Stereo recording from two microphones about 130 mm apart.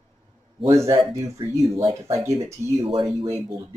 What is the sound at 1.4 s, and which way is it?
Speech, 40° right (ahead or behind).